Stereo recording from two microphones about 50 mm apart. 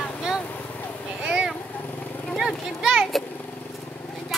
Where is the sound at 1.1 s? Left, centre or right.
Centre.